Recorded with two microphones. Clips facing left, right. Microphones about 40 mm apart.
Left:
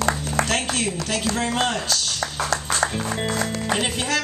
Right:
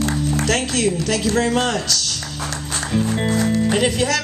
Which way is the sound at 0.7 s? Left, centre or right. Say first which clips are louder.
Right 5 dB; left.